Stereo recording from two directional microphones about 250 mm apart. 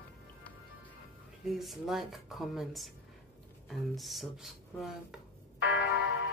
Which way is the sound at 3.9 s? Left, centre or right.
Centre.